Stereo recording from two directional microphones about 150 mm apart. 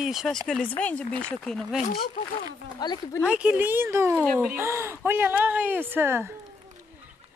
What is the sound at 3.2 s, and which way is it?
Speech, 5° right (ahead or behind).